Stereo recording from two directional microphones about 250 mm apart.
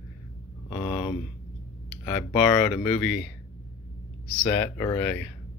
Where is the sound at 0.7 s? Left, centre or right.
Centre.